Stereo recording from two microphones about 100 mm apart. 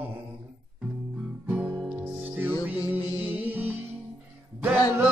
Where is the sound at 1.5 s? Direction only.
20° right (ahead or behind).